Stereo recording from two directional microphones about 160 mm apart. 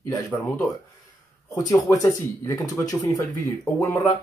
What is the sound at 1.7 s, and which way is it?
Speech, 20° left (ahead or behind).